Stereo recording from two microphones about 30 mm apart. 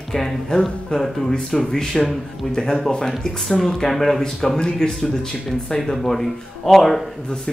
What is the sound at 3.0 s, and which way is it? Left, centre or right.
Speech, centre.